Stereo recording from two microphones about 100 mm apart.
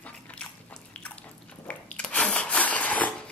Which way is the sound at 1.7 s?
10° left (ahead or behind).